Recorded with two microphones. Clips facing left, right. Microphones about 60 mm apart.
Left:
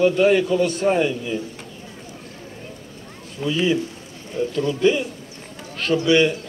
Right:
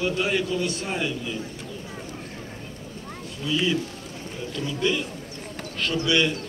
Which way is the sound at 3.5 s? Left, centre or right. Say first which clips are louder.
Left 3 dB; centre.